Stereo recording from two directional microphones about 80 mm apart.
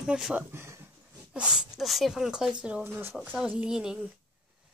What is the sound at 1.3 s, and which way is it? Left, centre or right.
A woman's voice, centre.